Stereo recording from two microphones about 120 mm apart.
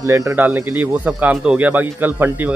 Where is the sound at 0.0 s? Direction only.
25° right (ahead or behind).